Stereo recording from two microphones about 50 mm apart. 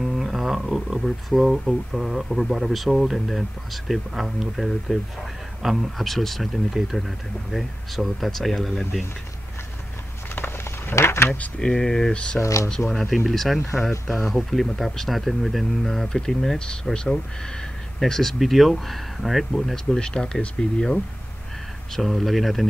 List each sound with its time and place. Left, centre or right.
0.0 s speech: centre
10.3 s a sound: left
11.6 s speech: centre
12.1 s speech: left
12.4 s speech: left
12.6 s speech: centre
18.4 s speech: centre
19.7 s speech: centre
21.9 s speech: centre